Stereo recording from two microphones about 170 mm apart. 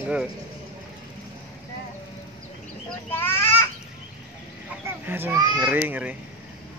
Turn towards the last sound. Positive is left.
turn(degrees=-10)  # may be behind; listen again after turning